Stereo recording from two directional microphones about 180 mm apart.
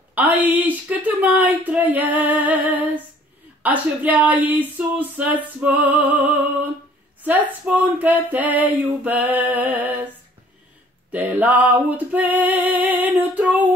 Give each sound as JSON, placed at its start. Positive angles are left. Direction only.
{"t": 0.1, "sound": "speech", "side_deg": -10}
{"t": 7.2, "sound": "speech", "side_deg": -10}
{"t": 11.1, "sound": "music", "side_deg": -10}